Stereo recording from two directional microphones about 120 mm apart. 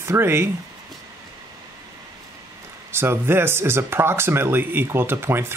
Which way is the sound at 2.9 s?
20° right (ahead or behind).